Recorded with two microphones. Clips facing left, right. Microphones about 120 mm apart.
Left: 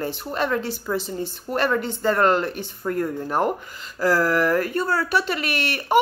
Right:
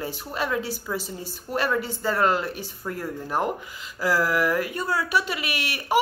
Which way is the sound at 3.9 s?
10° right (ahead or behind).